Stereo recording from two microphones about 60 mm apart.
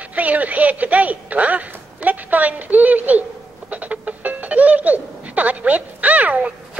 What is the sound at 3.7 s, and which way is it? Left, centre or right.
Music, right.